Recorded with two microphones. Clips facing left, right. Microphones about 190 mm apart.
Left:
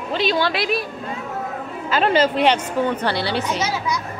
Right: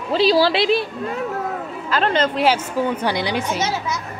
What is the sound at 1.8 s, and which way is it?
Speech, 5° left (ahead or behind).